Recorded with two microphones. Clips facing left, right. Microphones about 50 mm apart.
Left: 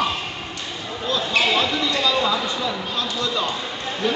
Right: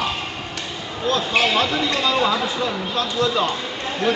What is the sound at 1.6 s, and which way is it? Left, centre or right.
Speech, right.